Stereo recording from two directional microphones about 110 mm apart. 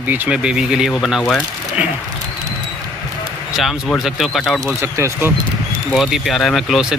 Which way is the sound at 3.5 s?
5° right (ahead or behind).